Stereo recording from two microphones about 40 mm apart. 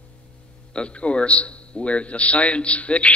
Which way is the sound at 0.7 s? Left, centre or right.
Left.